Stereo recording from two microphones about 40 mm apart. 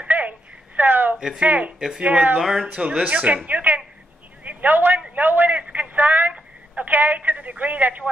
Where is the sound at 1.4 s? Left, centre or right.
Right.